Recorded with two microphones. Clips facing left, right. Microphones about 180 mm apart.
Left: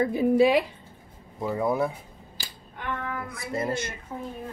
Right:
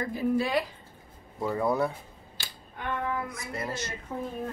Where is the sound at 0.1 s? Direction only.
70° left (ahead or behind).